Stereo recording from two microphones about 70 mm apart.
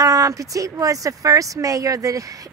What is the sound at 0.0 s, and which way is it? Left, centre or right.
Speech, right.